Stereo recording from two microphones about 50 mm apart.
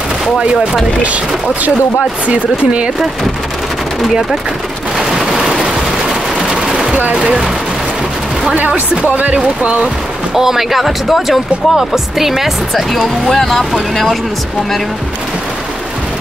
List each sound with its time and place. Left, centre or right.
1.0 s speech: right
4.9 s machine gun: centre
7.2 s speech: centre
8.5 s speech: right
10.3 s speech: centre
13.0 s speech: centre